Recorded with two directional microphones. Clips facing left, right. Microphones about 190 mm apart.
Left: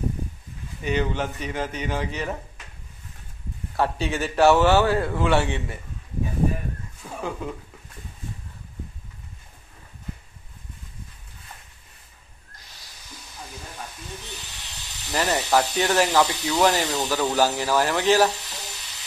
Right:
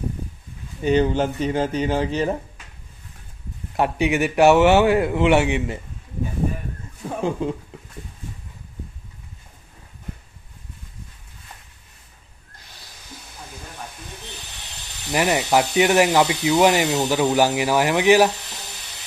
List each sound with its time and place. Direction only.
0.8 s speech: 30° right (ahead or behind)
3.7 s a man's voice: 15° right (ahead or behind)
7.0 s a sound: 25° right (ahead or behind)
15.0 s a man's voice: 15° right (ahead or behind)